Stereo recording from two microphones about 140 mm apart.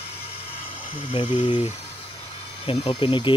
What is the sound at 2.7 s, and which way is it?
Speech, 40° left (ahead or behind).